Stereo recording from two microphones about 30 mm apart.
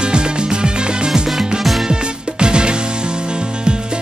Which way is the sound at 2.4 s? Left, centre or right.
Right.